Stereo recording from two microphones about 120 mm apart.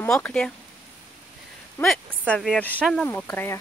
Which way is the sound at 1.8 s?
5° left (ahead or behind).